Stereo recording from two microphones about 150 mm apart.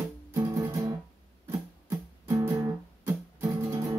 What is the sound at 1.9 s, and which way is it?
Music, 20° right (ahead or behind).